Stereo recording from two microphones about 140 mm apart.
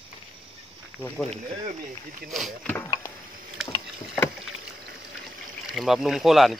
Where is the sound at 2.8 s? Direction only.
25° left (ahead or behind).